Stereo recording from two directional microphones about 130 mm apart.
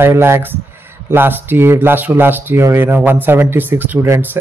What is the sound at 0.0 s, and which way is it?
A man's voice, 20° right (ahead or behind).